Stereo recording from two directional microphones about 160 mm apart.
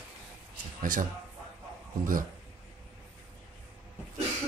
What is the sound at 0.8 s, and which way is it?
Speech, 55° right (ahead or behind).